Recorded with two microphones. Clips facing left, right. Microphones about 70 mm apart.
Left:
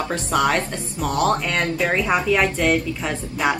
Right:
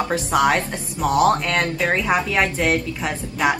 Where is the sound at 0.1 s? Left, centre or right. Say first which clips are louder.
Right 1 dB; centre.